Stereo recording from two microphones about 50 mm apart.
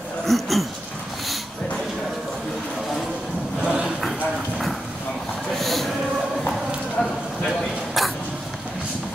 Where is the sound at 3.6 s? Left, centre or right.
Centre.